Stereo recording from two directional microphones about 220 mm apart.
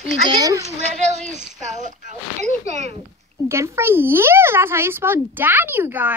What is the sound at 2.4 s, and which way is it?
Speech, 30° right (ahead or behind).